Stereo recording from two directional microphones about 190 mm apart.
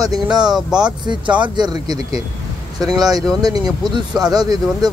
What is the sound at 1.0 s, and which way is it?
Speech, 25° right (ahead or behind).